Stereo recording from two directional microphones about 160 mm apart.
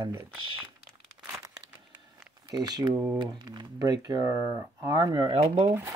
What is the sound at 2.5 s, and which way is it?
Speech, 25° right (ahead or behind).